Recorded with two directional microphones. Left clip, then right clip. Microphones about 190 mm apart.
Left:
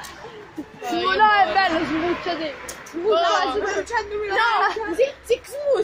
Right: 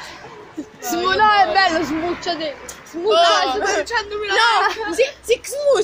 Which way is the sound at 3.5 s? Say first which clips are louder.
Right 4 dB; 55° right (ahead or behind).